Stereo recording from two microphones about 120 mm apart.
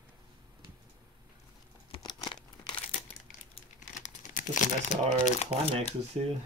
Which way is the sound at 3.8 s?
90° left.